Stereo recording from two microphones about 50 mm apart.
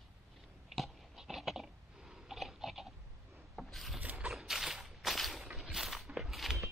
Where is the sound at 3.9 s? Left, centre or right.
Right.